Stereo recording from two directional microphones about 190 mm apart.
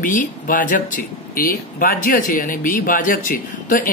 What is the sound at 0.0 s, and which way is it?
Speech, 45° left (ahead or behind).